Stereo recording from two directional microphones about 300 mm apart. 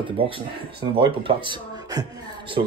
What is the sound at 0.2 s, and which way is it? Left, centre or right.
Speech, centre.